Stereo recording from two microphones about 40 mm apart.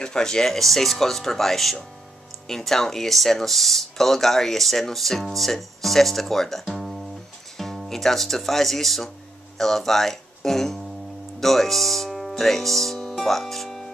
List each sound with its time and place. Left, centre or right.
0.0 s speech: centre
0.5 s speech: centre
6.7 s guitar: centre
7.9 s speech: centre